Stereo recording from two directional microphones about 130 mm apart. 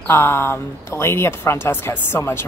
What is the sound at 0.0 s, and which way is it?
Speech, 15° left (ahead or behind).